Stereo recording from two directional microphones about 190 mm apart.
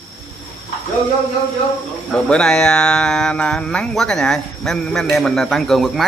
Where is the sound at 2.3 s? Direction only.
5° left (ahead or behind).